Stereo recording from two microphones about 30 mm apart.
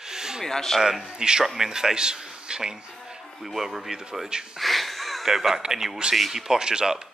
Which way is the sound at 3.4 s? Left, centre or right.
Centre.